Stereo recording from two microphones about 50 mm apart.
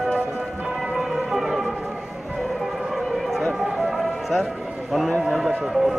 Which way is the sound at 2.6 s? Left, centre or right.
Centre.